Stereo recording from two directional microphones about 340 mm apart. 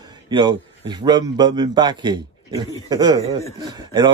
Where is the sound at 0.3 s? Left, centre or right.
Centre.